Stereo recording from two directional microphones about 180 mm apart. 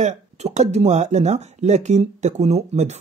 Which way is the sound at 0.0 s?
40° right (ahead or behind).